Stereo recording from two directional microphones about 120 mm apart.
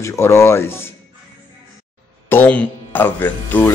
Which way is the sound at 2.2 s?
15° left (ahead or behind).